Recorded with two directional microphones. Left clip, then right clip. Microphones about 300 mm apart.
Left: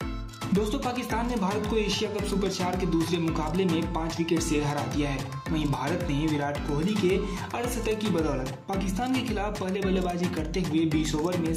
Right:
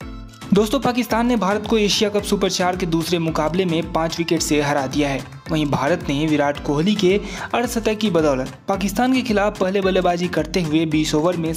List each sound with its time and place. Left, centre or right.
0.6 s speech: right